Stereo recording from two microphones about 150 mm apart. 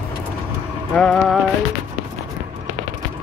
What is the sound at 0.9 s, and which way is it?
Speech, 5° left (ahead or behind).